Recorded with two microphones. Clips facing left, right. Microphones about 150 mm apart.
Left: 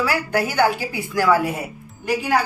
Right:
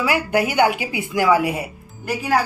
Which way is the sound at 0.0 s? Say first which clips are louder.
Right 2 dB; 15° right (ahead or behind).